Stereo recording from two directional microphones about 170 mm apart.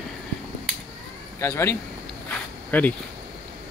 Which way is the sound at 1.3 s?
15° left (ahead or behind).